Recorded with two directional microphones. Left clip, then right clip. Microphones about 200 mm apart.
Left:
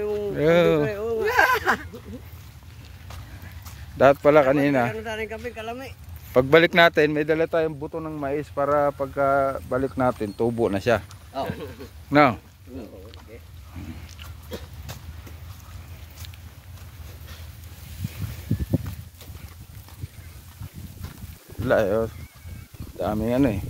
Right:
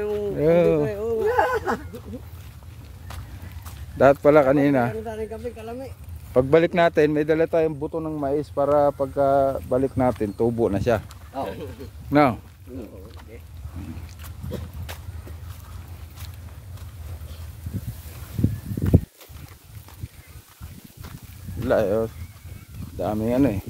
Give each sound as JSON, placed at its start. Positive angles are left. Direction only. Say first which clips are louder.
{"t": 0.0, "sound": "a sound", "louder": "right 1 dB", "side_deg": -25}
{"t": 0.3, "sound": "a man's voice", "louder": "even", "side_deg": 0}
{"t": 0.8, "sound": "a sound", "louder": "right 1 dB", "side_deg": -10}
{"t": 1.2, "sound": "a sound", "louder": "left 2 dB", "side_deg": 10}
{"t": 4.0, "sound": "speech", "louder": "right 1 dB", "side_deg": -10}
{"t": 5.0, "sound": "speech", "louder": "even", "side_deg": 20}
{"t": 6.3, "sound": "a man's voice", "louder": "left 2 dB", "side_deg": 5}
{"t": 11.4, "sound": "speech", "louder": "right 1 dB", "side_deg": -15}
{"t": 12.1, "sound": "a man's voice", "louder": "left 1 dB", "side_deg": 0}
{"t": 14.9, "sound": "vehicle", "louder": "right 3 dB", "side_deg": -10}
{"t": 21.6, "sound": "a man's voice", "louder": "even", "side_deg": 0}